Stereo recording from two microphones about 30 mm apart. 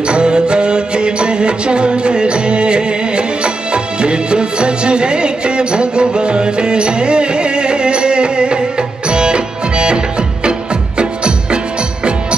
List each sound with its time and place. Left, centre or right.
0.0 s music: right
11.0 s music: right